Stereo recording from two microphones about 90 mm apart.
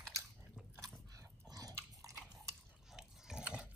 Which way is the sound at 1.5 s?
45° right (ahead or behind).